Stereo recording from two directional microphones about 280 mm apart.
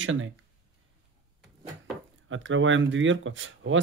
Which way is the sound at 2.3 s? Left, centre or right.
Right.